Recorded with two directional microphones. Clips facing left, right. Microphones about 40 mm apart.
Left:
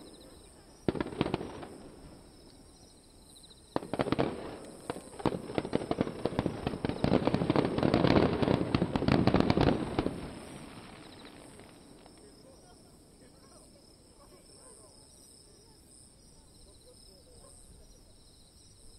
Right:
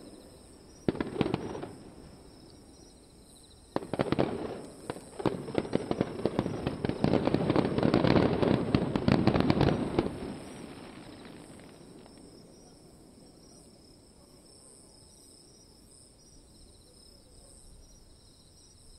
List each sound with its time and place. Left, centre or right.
0.0 s fireworks: left
0.8 s fireworks: centre
1.9 s a sound: centre
3.7 s fireworks: centre
6.3 s fireworks: centre
6.6 s fireworks: centre